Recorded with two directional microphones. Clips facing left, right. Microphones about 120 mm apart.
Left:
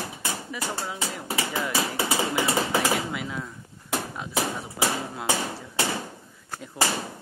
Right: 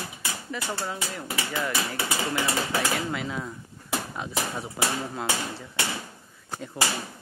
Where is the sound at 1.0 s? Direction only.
30° left (ahead or behind).